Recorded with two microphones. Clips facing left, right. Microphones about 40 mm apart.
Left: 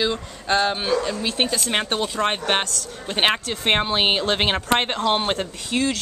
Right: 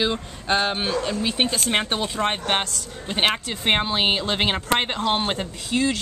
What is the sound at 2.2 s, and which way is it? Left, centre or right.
Speech, centre.